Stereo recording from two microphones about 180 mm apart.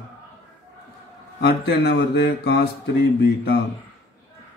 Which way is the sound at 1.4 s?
65° left (ahead or behind).